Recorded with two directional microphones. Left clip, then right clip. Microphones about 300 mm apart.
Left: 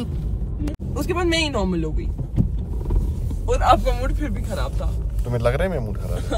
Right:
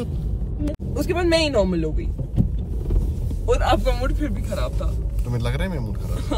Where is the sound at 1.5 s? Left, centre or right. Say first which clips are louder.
Right 4 dB; left.